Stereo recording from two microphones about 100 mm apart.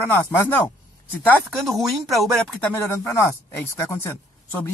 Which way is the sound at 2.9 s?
25° left (ahead or behind).